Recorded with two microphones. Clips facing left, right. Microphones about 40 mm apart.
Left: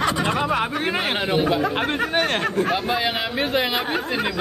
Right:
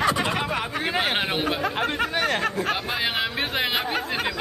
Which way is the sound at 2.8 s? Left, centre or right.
Centre.